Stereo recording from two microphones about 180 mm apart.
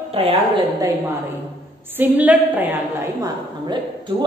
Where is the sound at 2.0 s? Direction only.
10° right (ahead or behind).